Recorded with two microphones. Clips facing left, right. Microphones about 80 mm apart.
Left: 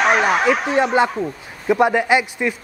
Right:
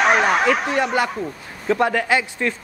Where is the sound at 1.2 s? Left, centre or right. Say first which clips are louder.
Left 3 dB; centre.